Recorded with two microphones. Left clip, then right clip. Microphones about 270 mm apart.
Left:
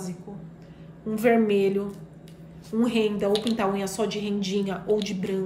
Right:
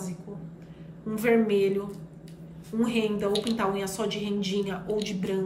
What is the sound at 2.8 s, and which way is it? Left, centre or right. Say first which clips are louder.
A woman's voice: left 3 dB; centre.